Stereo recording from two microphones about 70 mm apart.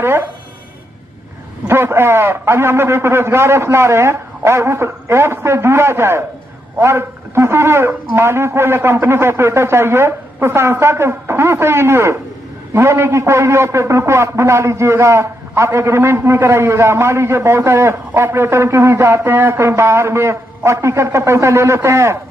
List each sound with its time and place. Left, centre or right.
0.0 s a man's voice: right
1.7 s a man's voice: right